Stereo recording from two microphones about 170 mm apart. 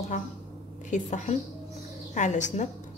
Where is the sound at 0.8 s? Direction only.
45° left (ahead or behind).